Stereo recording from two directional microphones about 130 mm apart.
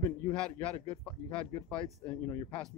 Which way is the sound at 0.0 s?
5° left (ahead or behind).